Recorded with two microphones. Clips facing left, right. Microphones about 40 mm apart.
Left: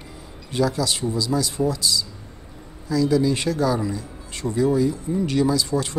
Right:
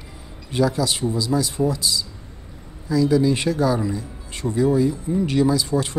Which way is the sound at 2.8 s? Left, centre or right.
Centre.